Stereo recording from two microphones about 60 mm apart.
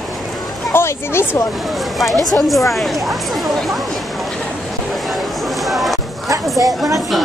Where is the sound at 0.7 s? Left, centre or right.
Left.